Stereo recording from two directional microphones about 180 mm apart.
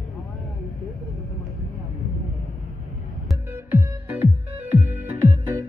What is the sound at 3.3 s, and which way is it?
Music, 10° right (ahead or behind).